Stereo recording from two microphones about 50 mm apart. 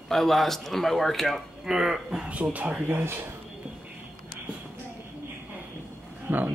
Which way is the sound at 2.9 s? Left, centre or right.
Right.